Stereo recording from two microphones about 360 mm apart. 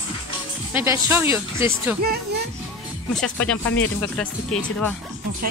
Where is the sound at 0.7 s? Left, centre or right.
Centre.